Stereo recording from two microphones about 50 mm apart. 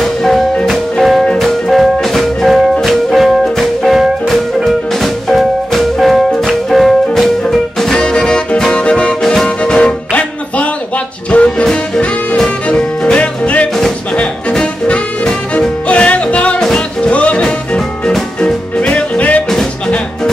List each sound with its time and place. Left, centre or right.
0.0 s music: centre; by 9.1 s left
9.2 s music: centre
9.6 s music: centre
11.3 s music: left
15.5 s music: left
16.5 s music: centre
17.1 s music: left